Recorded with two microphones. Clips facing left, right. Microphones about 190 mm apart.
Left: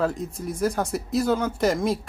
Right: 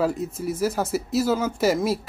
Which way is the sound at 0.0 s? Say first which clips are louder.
Right 2 dB; 5° right (ahead or behind).